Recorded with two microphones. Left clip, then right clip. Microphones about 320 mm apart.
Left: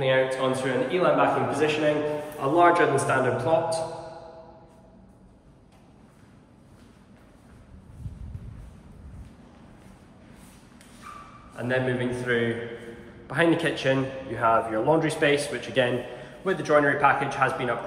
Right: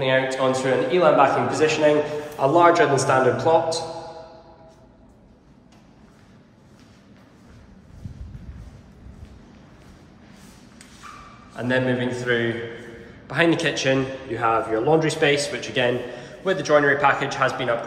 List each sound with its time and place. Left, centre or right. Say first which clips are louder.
0.0 s a man's voice: right 3 dB; centre
11.5 s a man's voice: right 4 dB; centre